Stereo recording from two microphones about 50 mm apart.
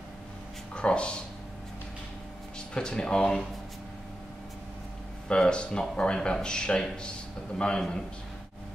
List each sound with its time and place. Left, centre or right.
0.7 s a sound: left
2.7 s speech: centre
5.3 s speech: centre